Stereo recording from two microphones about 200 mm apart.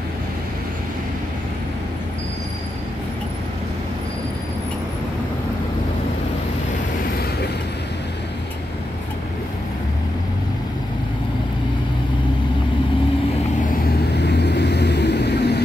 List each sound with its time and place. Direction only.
14.2 s vehicle: 55° left (ahead or behind)